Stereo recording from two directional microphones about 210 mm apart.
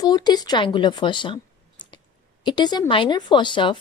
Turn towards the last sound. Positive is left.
turn(degrees=20)  # may be behind; listen again after turning